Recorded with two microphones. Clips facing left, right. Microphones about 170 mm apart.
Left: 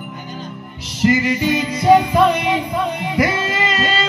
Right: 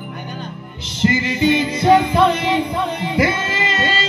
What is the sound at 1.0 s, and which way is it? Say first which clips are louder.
Music: left 1 dB; 25° right (ahead or behind).